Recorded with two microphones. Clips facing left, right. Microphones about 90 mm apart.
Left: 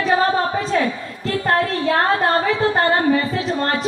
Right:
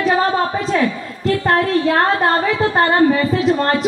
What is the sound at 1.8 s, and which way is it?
Speech, 35° right (ahead or behind).